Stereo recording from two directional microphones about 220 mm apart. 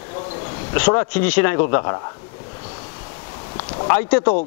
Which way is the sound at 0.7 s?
10° left (ahead or behind).